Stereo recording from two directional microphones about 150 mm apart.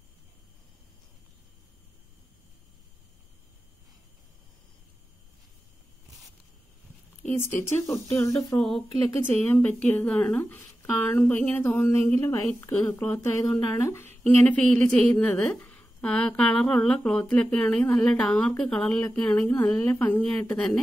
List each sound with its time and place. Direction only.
7.6 s speech: 20° left (ahead or behind)
8.5 s speech: 5° left (ahead or behind)